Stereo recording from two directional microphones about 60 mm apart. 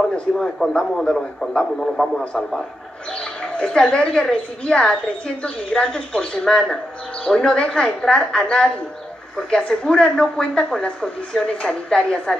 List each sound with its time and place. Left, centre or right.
0.6 s speech: centre
0.9 s a woman's voice: centre